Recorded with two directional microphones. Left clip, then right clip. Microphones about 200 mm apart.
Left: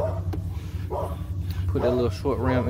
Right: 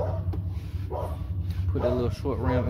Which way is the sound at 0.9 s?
55° left (ahead or behind).